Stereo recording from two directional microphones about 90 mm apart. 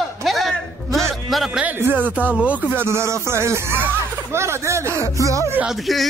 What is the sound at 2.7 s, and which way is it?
Speech, 25° right (ahead or behind).